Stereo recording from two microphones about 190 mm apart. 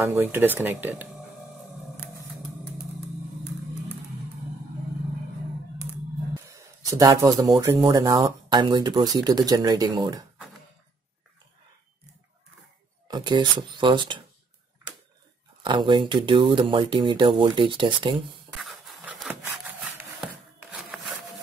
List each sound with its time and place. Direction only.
0.0 s speech: 10° right (ahead or behind)
6.5 s speech: 15° right (ahead or behind)
13.1 s speech: 25° right (ahead or behind)
15.6 s speech: 25° right (ahead or behind)
18.6 s a sound: centre (ahead or behind)